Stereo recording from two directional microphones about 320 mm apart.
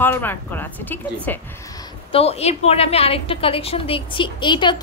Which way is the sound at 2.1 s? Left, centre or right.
Centre.